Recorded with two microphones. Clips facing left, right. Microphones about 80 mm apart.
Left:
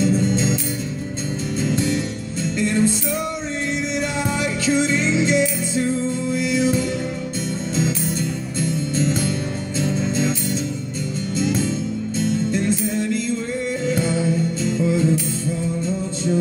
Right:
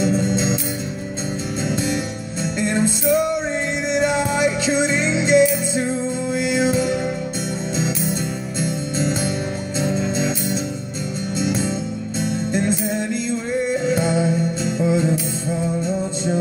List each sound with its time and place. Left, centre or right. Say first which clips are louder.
0.0 s music: even; centre
1.6 s music: left 2 dB; centre